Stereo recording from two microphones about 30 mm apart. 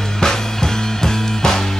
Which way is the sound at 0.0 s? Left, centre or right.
Centre.